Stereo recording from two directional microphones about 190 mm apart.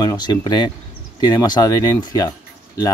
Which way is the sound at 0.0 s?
20° left (ahead or behind).